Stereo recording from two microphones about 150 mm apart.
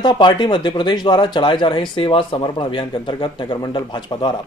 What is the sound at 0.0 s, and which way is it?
Speech, 30° left (ahead or behind).